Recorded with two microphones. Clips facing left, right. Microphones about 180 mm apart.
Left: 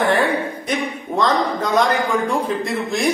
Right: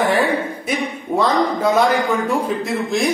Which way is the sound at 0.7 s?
10° right (ahead or behind).